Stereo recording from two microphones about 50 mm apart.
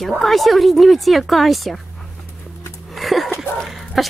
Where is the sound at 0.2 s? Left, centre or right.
Centre.